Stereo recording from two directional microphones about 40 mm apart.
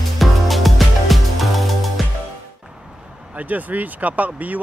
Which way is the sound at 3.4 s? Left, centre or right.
Right.